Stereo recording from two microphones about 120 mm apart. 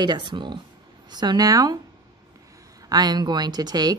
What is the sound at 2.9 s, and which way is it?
Speech, 35° right (ahead or behind).